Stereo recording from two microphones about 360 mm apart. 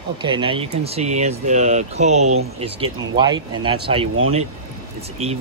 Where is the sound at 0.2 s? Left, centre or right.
Centre.